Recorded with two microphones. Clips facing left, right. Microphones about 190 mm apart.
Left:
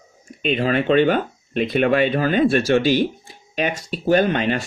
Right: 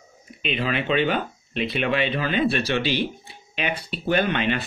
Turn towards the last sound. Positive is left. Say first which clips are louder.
# left 4 dB
turn(degrees=40)  # may be behind; listen again after turning